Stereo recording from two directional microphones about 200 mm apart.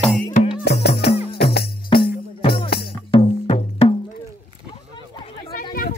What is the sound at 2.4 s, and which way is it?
Music, 25° left (ahead or behind).